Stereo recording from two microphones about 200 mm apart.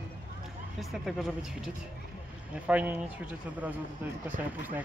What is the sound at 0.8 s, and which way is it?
Speech, centre (ahead or behind).